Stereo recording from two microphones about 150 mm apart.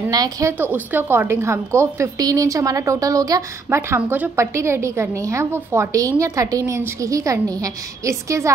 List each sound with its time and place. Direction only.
0.1 s a woman's voice: 25° right (ahead or behind)